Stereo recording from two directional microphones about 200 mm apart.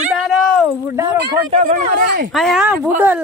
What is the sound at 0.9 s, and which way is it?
Speech, 20° right (ahead or behind).